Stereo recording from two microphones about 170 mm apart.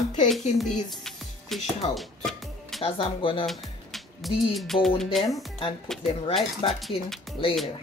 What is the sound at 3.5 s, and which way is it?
Music, centre (ahead or behind).